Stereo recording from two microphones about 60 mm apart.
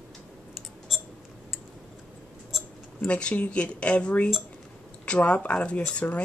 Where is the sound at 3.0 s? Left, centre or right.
Left.